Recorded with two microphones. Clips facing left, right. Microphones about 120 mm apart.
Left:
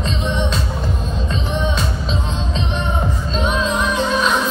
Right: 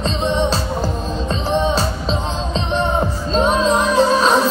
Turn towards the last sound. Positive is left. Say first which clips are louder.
# right 4 dB
turn(degrees=-35)  # may be behind; listen again after turning